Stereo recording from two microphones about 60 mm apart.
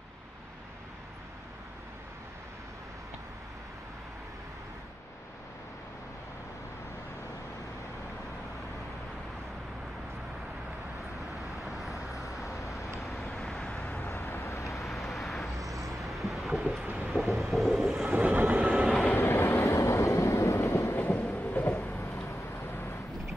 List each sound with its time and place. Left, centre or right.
11.6 s vehicle: centre
14.1 s vehicle: left
14.6 s vehicle: left
14.9 s vehicle: centre
16.8 s vehicle: right
17.1 s vehicle: centre
18.0 s train: right
18.7 s train: centre
19.1 s vehicle: left
19.8 s train: left
21.6 s vehicle: left